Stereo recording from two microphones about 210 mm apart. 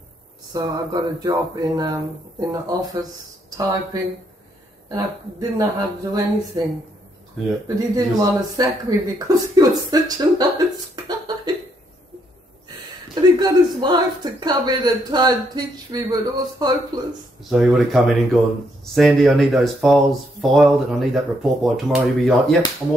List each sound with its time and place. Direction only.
0.5 s speech: 20° right (ahead or behind)
7.6 s speech: 20° right (ahead or behind)
11.1 s a sound: 20° right (ahead or behind)
12.6 s speech: 20° right (ahead or behind)
17.5 s speech: centre (ahead or behind)